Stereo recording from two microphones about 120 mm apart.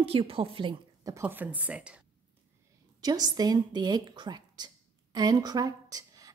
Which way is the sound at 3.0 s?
35° right (ahead or behind).